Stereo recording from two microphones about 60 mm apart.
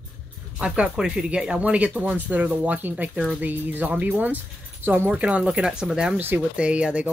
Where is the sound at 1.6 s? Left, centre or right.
Right.